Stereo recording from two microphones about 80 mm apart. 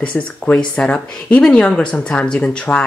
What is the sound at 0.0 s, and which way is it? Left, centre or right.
Speech, centre.